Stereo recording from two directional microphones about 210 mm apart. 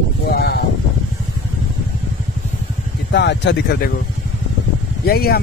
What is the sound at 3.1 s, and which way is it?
Speech, 55° left (ahead or behind).